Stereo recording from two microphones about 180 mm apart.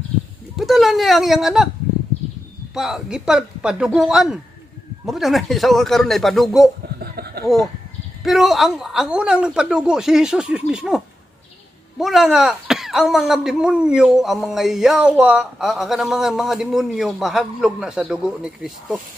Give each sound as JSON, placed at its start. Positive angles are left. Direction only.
{"t": 0.6, "sound": "speech", "side_deg": 0}
{"t": 2.7, "sound": "speech", "side_deg": 0}
{"t": 7.0, "sound": "a sound", "side_deg": -60}
{"t": 7.4, "sound": "speech", "side_deg": 0}
{"t": 12.0, "sound": "speech", "side_deg": 0}